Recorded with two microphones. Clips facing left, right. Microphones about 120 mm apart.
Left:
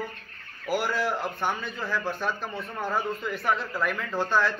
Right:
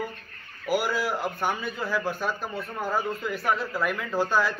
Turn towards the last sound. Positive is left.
turn(degrees=-5)  # may be behind; listen again after turning